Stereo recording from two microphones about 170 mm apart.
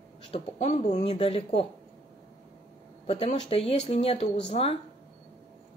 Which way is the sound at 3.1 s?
35° left (ahead or behind).